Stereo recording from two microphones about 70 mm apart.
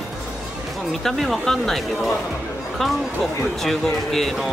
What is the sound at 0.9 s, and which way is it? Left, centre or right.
Speech, centre.